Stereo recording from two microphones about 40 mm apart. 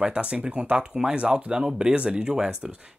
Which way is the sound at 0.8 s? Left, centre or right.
Centre.